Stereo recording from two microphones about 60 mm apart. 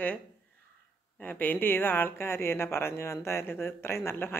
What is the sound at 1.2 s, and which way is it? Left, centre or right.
Speech, left.